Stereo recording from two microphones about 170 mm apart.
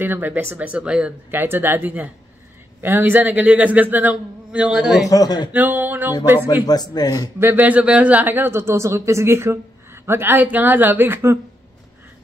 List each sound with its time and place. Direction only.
0.0 s a man's voice: 10° right (ahead or behind)
5.1 s a man's voice: 20° left (ahead or behind)
5.5 s a sound: 10° right (ahead or behind)
6.5 s a man's voice: 25° left (ahead or behind)
7.3 s a man's voice: 10° right (ahead or behind)